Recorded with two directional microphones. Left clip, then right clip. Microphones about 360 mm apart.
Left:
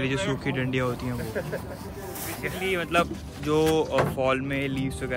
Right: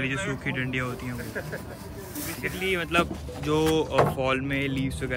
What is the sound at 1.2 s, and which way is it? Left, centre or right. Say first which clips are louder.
Speech: left 3 dB; left.